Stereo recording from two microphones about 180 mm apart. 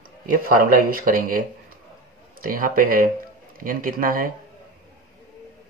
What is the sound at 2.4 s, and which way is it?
Speech, 50° right (ahead or behind).